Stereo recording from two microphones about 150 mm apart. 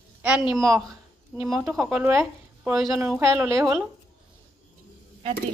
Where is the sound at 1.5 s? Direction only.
20° right (ahead or behind).